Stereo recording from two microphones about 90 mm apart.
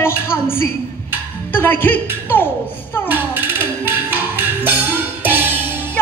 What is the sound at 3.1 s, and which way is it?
Music, 20° right (ahead or behind).